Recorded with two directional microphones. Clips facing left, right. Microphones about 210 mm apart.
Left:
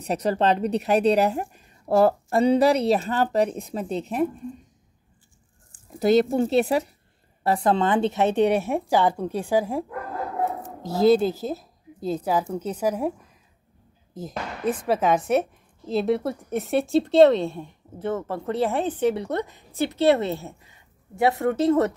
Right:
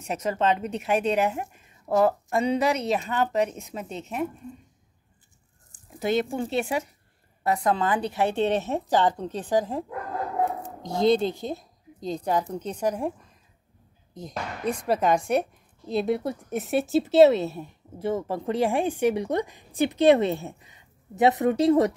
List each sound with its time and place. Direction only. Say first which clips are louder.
0.0 s a woman's voice: left 3 dB; 35° left (ahead or behind)
5.9 s a woman's voice: left 6 dB; 35° left (ahead or behind); by 13.1 s 5° left (ahead or behind)
14.1 s a woman's voice: left 2 dB; 5° left (ahead or behind); by 21.9 s 15° right (ahead or behind)